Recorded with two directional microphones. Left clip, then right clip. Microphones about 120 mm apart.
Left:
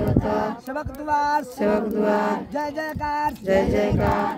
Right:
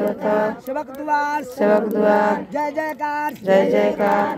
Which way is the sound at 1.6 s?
20° left (ahead or behind).